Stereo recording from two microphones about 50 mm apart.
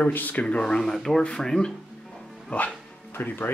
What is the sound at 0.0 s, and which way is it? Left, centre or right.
Speech, left.